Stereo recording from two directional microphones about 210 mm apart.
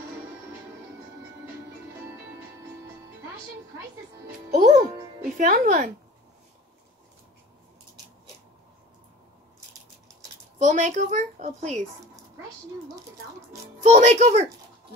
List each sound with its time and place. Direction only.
4.5 s speech: 35° right (ahead or behind)
10.6 s speech: 35° right (ahead or behind)
13.8 s speech: 35° right (ahead or behind)